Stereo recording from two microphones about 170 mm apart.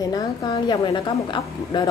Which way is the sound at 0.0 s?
25° left (ahead or behind).